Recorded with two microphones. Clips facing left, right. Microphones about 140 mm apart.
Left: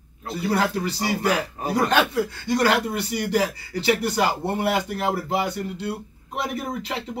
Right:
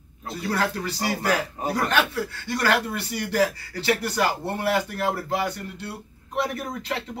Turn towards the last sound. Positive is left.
turn(degrees=15)  # may be behind; listen again after turning